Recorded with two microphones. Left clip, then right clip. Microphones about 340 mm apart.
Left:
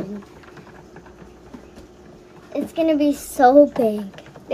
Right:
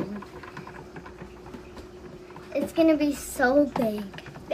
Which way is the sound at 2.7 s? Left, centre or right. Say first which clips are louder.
Left 3 dB; left.